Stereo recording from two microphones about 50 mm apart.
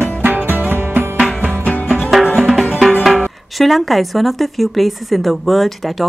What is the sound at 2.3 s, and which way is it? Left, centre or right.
Music, centre.